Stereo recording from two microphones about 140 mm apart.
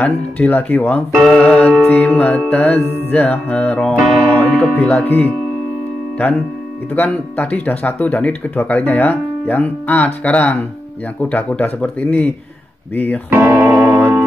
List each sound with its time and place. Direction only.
0.0 s speech: 10° left (ahead or behind)
6.9 s speech: 10° left (ahead or behind)
13.3 s music: 20° right (ahead or behind)